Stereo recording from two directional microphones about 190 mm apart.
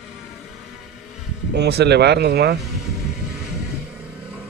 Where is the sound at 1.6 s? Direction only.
60° right (ahead or behind).